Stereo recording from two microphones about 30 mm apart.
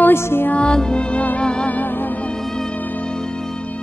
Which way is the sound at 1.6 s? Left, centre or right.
Left.